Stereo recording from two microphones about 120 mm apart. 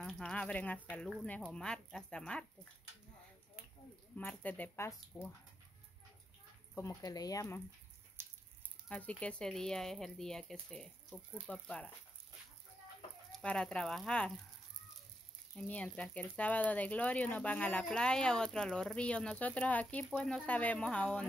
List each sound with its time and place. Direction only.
0.0 s speech: 5° left (ahead or behind)
4.2 s speech: 15° left (ahead or behind)
6.7 s speech: 25° left (ahead or behind)
8.8 s speech: 10° left (ahead or behind)
13.3 s speech: 10° left (ahead or behind)
15.5 s speech: 10° left (ahead or behind)